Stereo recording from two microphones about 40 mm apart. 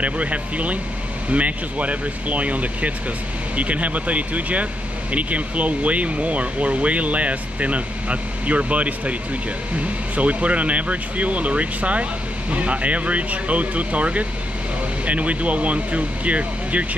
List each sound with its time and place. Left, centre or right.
0.0 s speech: right